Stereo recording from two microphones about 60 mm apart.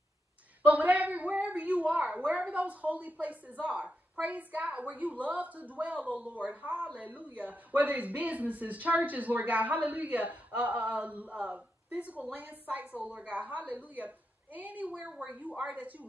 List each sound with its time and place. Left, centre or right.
0.6 s speech: right